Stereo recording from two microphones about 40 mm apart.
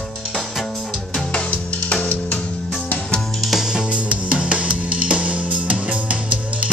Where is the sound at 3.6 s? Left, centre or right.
Right.